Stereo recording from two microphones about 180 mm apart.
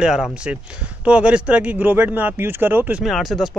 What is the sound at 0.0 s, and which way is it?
Speech, 5° right (ahead or behind).